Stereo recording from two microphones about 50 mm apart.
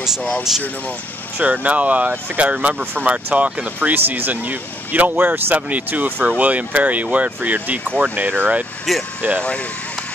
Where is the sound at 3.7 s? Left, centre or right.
Right.